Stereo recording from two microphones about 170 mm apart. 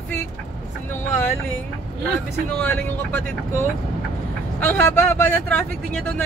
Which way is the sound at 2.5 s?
10° left (ahead or behind).